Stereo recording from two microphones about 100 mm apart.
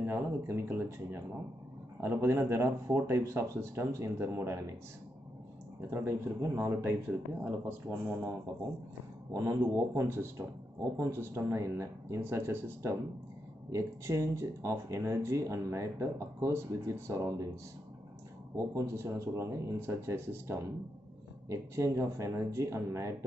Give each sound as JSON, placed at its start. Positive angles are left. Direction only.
{"t": 0.0, "sound": "speech", "side_deg": -20}
{"t": 5.9, "sound": "speech", "side_deg": -25}
{"t": 9.3, "sound": "speech", "side_deg": -30}
{"t": 18.8, "sound": "speech", "side_deg": -30}